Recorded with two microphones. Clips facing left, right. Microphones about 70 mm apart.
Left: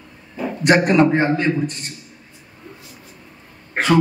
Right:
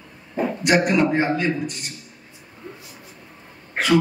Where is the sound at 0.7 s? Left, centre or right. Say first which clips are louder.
Left 5 dB; left.